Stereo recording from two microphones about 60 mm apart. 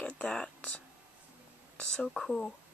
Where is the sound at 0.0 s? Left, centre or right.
Left.